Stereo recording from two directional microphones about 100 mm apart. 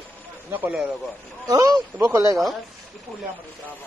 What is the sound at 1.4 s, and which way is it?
Speech, 40° right (ahead or behind).